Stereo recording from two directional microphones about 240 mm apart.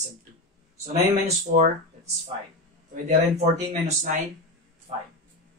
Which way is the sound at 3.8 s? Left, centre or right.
Right.